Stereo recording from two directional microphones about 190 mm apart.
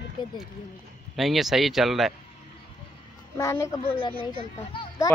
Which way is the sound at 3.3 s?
15° left (ahead or behind).